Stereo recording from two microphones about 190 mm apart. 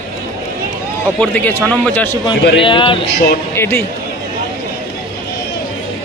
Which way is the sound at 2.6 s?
25° left (ahead or behind).